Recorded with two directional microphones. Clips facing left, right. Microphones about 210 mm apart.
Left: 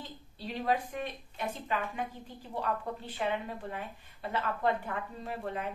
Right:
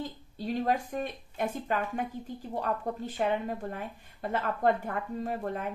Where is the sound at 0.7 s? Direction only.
45° right (ahead or behind).